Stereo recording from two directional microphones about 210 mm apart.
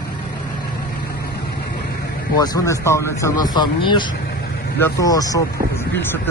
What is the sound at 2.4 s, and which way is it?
Speech, 15° left (ahead or behind).